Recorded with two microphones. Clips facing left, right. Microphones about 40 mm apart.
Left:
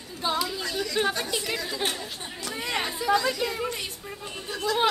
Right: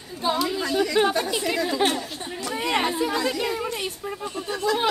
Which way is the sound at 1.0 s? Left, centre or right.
Centre.